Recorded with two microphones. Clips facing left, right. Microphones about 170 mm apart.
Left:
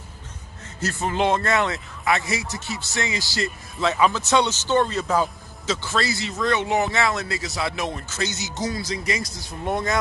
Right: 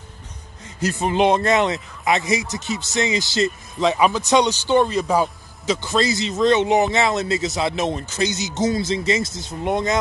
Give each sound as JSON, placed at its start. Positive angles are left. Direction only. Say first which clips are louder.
{"t": 0.7, "sound": "speech", "louder": "right 5 dB", "side_deg": -15}